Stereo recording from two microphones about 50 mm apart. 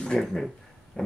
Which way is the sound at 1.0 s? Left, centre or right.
Left.